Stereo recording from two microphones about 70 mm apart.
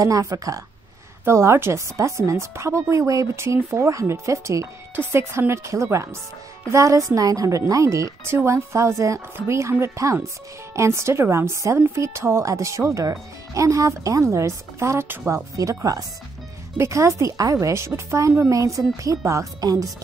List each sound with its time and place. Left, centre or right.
0.0 s a woman's voice: right
1.2 s a woman's voice: right
19.6 s speech: right